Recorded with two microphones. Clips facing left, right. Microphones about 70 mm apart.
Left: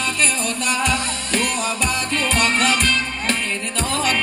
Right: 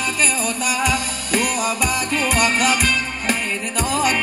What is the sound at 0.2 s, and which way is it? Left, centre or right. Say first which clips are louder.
Music: right 1 dB; centre.